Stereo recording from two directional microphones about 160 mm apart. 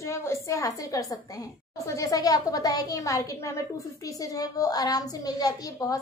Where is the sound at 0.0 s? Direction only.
15° left (ahead or behind).